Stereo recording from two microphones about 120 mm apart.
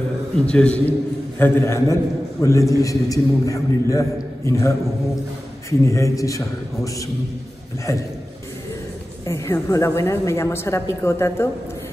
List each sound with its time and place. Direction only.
0.5 s a man's voice: 10° left (ahead or behind)
1.4 s a man's voice: 20° left (ahead or behind)
9.2 s a man's voice: 25° left (ahead or behind)